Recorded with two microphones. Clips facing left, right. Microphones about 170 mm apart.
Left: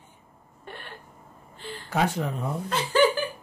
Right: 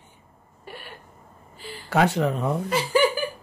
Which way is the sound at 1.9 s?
80° right.